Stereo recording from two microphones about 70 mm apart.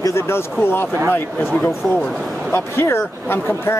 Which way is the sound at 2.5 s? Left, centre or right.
Left.